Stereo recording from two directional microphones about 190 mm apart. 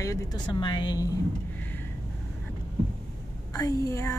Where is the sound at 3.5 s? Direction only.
15° left (ahead or behind).